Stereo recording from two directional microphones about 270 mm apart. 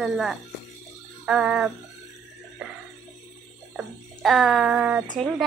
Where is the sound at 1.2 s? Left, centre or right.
Centre.